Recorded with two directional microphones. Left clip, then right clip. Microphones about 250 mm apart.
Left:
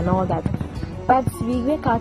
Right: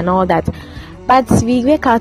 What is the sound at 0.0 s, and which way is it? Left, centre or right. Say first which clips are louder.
Speech: right 9 dB; right.